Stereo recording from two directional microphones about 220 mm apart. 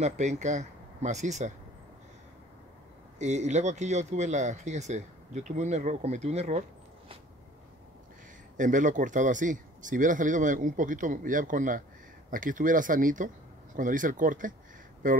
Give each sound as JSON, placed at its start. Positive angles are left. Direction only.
{"t": 0.0, "sound": "speech", "side_deg": -30}
{"t": 3.2, "sound": "speech", "side_deg": -30}
{"t": 8.5, "sound": "speech", "side_deg": -35}